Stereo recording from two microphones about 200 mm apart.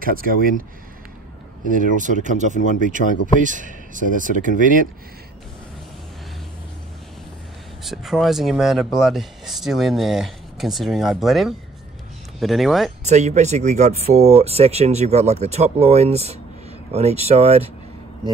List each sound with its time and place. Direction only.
0.0 s speech: 45° right (ahead or behind)
1.7 s speech: 40° right (ahead or behind)
3.0 s speech: 45° left (ahead or behind)
3.3 s speech: 40° right (ahead or behind)
7.8 s speech: centre (ahead or behind)
13.0 s speech: 35° right (ahead or behind)